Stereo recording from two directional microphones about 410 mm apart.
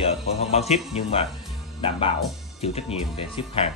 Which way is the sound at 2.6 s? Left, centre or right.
Centre.